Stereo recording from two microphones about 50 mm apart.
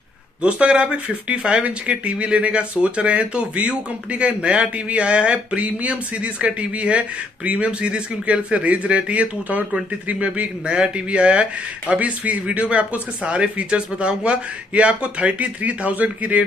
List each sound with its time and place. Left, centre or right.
0.4 s speech: right